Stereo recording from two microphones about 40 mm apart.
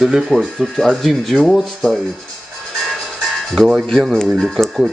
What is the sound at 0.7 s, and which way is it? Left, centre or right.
Speech, centre.